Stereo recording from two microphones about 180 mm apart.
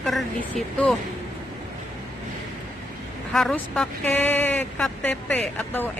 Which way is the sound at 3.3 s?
Centre (ahead or behind).